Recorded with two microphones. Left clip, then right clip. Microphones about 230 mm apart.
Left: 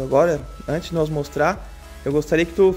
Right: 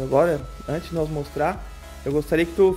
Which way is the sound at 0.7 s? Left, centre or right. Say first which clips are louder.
Left 4 dB; centre.